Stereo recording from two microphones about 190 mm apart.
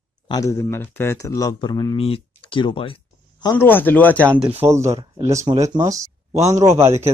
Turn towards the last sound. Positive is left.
turn(degrees=-15)  # may be behind; listen again after turning